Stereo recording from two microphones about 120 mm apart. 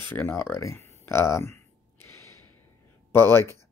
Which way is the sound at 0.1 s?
20° left (ahead or behind).